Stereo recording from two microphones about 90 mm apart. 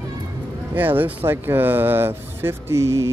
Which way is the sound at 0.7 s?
20° right (ahead or behind).